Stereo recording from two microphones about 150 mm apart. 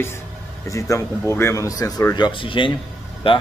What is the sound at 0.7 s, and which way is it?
A man's voice, 20° left (ahead or behind).